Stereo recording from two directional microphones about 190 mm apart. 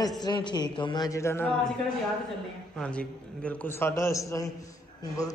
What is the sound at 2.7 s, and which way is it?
A man's voice, 5° left (ahead or behind).